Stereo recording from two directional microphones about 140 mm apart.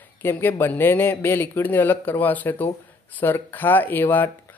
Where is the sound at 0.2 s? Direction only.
15° left (ahead or behind).